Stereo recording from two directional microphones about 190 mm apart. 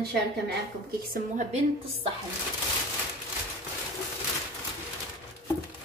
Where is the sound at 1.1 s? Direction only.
40° right (ahead or behind).